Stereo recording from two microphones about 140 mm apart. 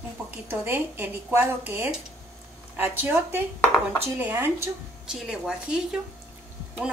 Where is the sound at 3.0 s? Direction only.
15° right (ahead or behind).